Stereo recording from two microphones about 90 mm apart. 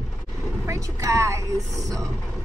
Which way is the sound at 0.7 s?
35° right (ahead or behind).